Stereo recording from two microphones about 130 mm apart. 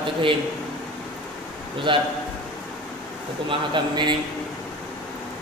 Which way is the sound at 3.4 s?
35° right (ahead or behind).